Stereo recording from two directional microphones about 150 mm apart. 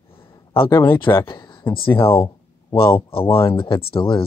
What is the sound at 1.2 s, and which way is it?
Speech, 30° left (ahead or behind).